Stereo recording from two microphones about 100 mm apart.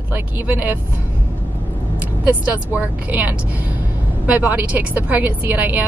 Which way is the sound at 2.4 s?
15° right (ahead or behind).